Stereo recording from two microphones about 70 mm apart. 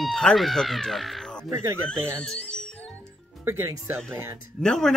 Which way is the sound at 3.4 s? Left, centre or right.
Right.